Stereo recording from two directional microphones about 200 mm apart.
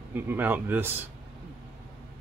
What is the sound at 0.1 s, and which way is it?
Speech, 10° right (ahead or behind).